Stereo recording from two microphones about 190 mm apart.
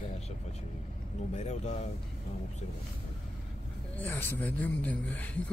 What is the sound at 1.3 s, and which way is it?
Speech, 35° left (ahead or behind).